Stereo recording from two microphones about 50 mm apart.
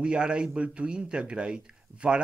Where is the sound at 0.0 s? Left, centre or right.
Centre.